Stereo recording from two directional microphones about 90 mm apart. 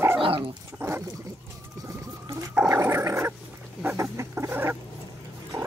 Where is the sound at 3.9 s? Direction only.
30° right (ahead or behind).